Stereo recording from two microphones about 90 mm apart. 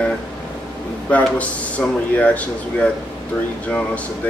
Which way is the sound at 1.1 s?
15° left (ahead or behind).